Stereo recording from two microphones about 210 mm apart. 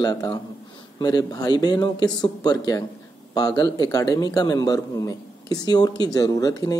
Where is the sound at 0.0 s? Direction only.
20° left (ahead or behind).